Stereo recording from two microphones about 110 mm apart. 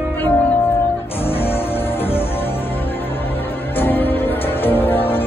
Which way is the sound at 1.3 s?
20° left (ahead or behind).